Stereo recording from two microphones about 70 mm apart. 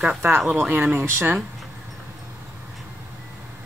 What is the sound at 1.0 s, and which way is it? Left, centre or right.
Speech, right.